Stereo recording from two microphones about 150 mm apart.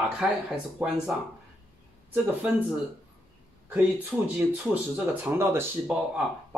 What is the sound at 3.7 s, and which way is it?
Speech, 10° right (ahead or behind).